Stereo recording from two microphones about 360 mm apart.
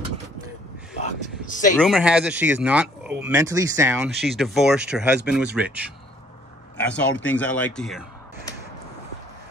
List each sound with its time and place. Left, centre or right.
1.4 s speech: left
1.8 s speech: centre